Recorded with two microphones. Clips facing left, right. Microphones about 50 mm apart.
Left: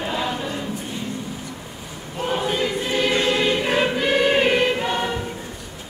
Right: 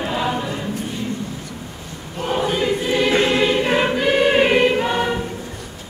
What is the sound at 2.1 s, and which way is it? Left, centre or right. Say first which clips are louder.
Choir: right 2 dB; centre.